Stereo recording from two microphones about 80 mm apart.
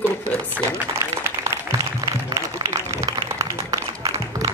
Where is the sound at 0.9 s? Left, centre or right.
Right.